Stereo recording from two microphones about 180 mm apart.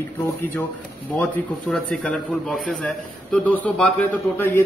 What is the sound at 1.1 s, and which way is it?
A man's voice, 5° left (ahead or behind).